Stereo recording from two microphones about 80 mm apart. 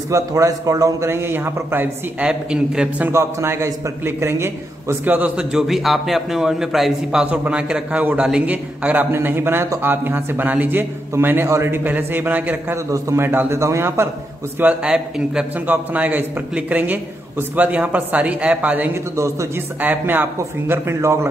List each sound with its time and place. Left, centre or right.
0.1 s a man's voice: right
1.0 s a man's voice: right; by 2.9 s centre
3.1 s a man's voice: right
12.7 s a man's voice: right
14.6 s a man's voice: centre
15.6 s a man's voice: right
19.1 s a man's voice: right
19.8 s a man's voice: right